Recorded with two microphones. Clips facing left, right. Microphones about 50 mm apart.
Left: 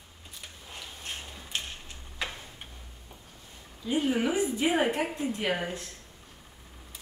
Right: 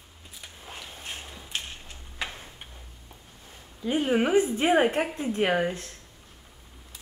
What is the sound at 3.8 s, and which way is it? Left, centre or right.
A woman's voice, right.